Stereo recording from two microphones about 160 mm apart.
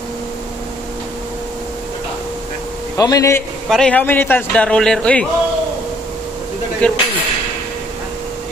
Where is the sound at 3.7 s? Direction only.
5° left (ahead or behind).